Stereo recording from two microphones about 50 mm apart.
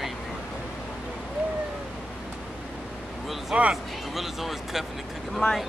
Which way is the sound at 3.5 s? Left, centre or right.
Centre.